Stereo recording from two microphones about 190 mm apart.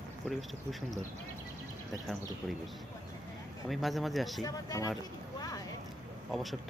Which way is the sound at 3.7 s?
Centre (ahead or behind).